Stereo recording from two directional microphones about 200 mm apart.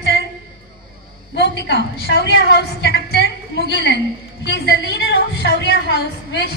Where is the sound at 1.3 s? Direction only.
60° left (ahead or behind).